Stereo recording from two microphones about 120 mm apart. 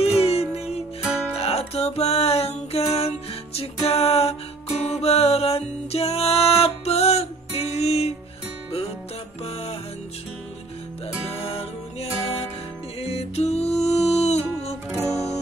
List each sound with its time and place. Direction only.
0.2 s music: 60° left (ahead or behind)
9.4 s music: 60° left (ahead or behind)
11.3 s music: 55° left (ahead or behind)